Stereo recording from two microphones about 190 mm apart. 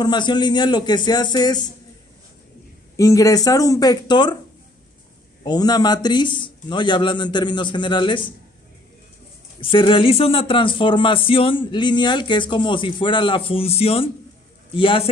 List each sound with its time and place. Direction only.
0.0 s speech: 25° left (ahead or behind)
3.0 s speech: 15° left (ahead or behind)
5.4 s speech: 20° left (ahead or behind)
9.6 s speech: 25° left (ahead or behind)